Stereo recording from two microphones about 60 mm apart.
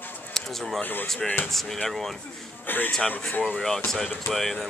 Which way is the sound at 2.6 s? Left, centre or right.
Left.